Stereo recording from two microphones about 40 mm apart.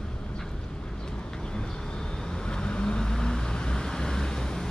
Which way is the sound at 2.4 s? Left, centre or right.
Left.